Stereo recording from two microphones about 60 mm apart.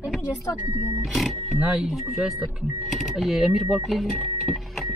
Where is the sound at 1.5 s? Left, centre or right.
Centre.